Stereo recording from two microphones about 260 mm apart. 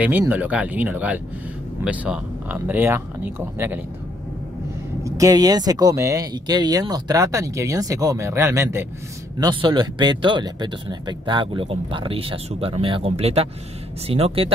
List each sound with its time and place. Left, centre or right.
0.0 s speech: centre
5.0 s speech: centre